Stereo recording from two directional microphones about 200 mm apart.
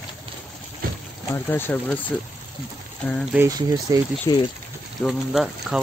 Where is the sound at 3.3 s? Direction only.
15° right (ahead or behind).